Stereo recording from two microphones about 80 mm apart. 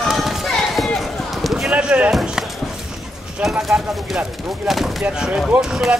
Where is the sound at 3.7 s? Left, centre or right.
Centre.